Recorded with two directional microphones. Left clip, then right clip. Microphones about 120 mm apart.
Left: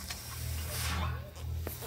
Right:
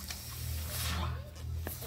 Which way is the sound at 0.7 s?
30° right (ahead or behind).